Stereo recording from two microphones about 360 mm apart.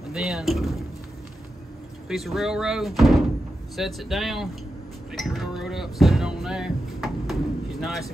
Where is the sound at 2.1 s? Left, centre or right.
Centre.